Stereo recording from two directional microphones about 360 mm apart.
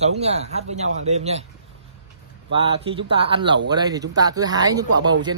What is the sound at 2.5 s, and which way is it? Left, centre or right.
Speech, centre.